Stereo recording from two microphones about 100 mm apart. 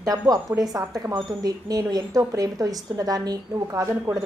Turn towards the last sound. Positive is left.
turn(degrees=-30)  # may be behind; listen again after turning